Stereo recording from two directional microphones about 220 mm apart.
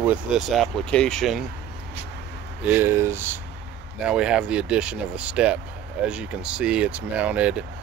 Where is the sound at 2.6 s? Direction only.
10° right (ahead or behind).